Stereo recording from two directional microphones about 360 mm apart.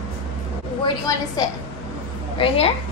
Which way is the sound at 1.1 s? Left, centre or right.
Centre.